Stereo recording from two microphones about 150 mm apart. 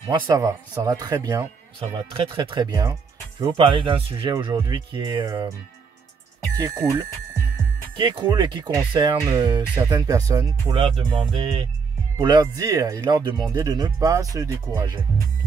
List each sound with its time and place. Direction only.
0.1 s speech: 25° right (ahead or behind)
1.8 s speech: 35° right (ahead or behind)
6.6 s speech: 20° right (ahead or behind)
7.9 s speech: 35° right (ahead or behind)
10.7 s speech: 35° right (ahead or behind)